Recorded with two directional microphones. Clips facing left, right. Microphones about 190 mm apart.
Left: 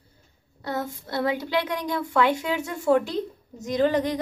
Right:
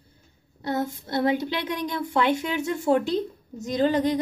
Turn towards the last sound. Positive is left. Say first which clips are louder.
# even
turn(degrees=-25)  # may be behind; listen again after turning